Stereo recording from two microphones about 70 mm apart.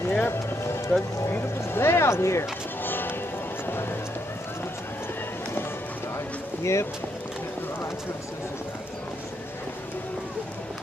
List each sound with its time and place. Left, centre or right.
0.2 s run: left
1.3 s speech: left
6.6 s speech: left